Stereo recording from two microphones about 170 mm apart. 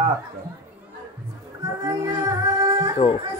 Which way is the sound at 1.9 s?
20° right (ahead or behind).